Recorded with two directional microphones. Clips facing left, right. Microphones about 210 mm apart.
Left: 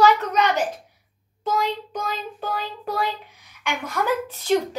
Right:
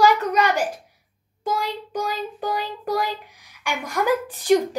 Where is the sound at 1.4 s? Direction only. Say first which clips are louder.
Left 2 dB; 10° right (ahead or behind).